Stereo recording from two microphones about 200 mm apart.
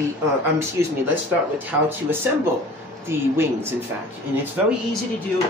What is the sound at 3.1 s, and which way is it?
Speech, 10° right (ahead or behind).